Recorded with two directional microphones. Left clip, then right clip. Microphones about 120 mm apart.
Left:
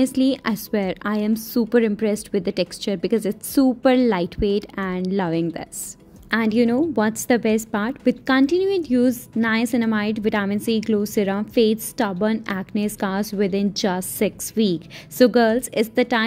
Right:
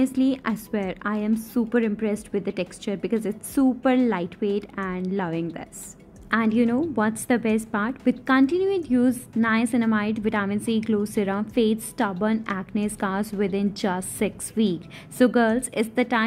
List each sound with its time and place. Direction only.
0.0 s a woman's voice: 35° left (ahead or behind)